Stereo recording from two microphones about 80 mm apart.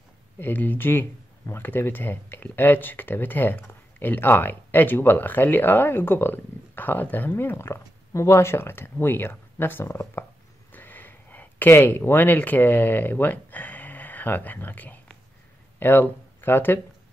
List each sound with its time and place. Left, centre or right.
0.4 s speech: left
10.7 s a sound: left
15.8 s speech: left